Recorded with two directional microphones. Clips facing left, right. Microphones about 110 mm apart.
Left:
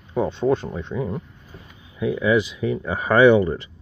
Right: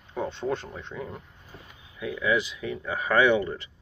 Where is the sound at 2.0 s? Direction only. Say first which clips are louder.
Left 7 dB; 25° left (ahead or behind).